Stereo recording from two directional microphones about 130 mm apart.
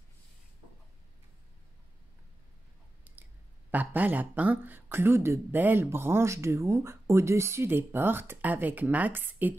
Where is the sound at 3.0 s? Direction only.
15° right (ahead or behind).